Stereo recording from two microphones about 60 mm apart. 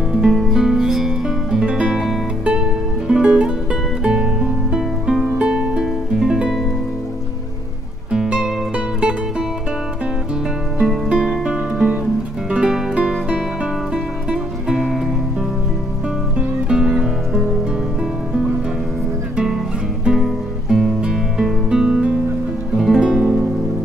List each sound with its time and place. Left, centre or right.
0.1 s music: centre
1.9 s guitar: centre
3.1 s music: centre
8.1 s music: centre
10.8 s music: centre
11.4 s music: centre
16.3 s music: centre
19.3 s music: centre